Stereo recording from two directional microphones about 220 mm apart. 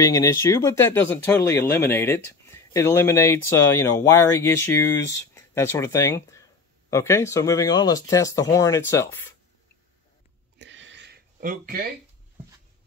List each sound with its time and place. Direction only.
0.0 s speech: 15° left (ahead or behind)
10.6 s a sound: 55° right (ahead or behind)
11.3 s speech: 40° right (ahead or behind)